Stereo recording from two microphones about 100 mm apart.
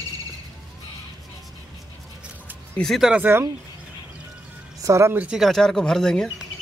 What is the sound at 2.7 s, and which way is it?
Speech, 5° left (ahead or behind).